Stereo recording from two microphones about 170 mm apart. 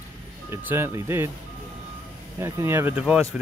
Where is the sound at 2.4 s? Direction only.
15° right (ahead or behind).